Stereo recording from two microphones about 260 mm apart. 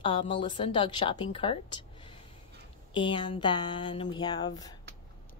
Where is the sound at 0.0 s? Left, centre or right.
Centre.